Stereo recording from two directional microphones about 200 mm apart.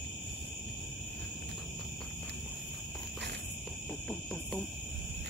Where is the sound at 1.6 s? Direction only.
Centre (ahead or behind).